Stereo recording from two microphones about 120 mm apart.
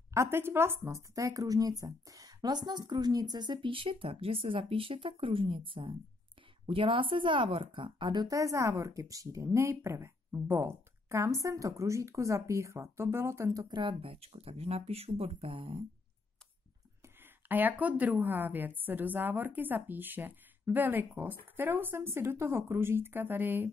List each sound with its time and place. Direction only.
0.1 s speech: 20° right (ahead or behind)
13.7 s speech: 45° right (ahead or behind)
17.2 s a woman's voice: 15° right (ahead or behind)